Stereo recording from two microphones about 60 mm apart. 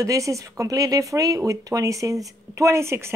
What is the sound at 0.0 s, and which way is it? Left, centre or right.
Speech, right.